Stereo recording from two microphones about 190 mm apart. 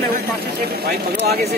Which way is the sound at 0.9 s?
55° right (ahead or behind).